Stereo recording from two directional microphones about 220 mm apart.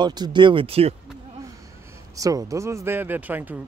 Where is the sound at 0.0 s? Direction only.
20° right (ahead or behind).